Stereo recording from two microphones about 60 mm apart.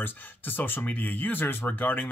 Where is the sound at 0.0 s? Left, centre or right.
Left.